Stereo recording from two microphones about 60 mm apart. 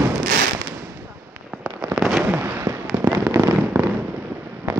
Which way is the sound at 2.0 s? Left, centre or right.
Centre.